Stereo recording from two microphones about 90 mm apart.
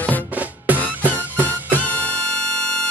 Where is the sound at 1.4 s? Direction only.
20° left (ahead or behind).